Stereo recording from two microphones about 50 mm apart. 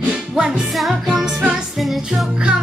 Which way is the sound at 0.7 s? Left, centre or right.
Centre.